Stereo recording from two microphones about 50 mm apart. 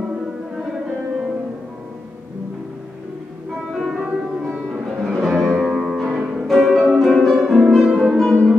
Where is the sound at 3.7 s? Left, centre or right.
Centre.